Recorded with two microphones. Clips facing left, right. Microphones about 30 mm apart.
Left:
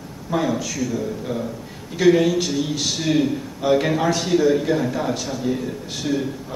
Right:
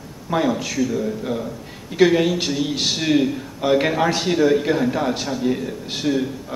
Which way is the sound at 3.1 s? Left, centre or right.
Centre.